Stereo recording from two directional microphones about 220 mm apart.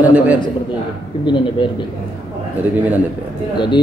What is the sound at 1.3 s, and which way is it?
Speech, 20° left (ahead or behind).